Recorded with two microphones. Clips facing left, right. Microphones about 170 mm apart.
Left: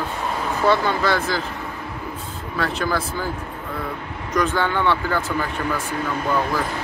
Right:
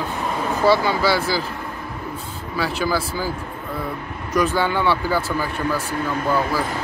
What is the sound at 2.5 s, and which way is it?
Speech, 5° right (ahead or behind).